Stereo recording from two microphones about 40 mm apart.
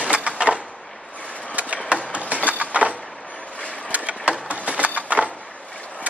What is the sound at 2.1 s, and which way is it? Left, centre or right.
Music, right.